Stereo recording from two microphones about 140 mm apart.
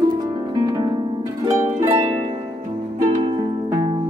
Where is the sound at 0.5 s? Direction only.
30° right (ahead or behind).